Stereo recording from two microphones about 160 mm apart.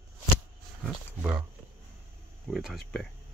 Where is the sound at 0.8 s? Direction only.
5° right (ahead or behind).